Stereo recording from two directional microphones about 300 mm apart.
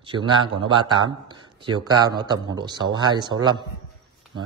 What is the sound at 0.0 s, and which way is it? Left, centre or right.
Speech, centre.